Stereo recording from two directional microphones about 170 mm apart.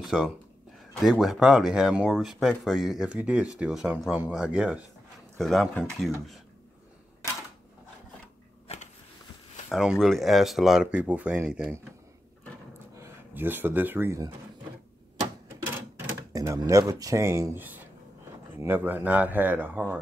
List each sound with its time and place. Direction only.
0.0 s speech: 5° right (ahead or behind)
9.7 s speech: centre (ahead or behind)
12.9 s speech: 15° right (ahead or behind)
15.1 s typewriter: 15° right (ahead or behind)
16.3 s speech: 20° right (ahead or behind)